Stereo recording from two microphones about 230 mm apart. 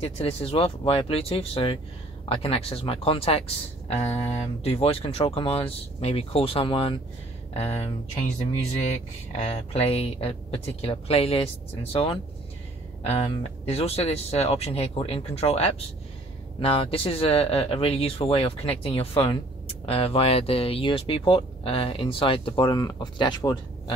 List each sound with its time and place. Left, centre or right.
0.0 s speech: left
9.4 s speech: left